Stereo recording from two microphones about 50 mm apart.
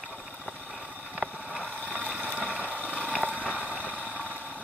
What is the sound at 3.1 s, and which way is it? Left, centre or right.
Boiling, right.